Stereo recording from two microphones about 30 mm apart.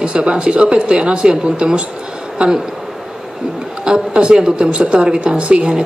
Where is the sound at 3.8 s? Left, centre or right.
Right.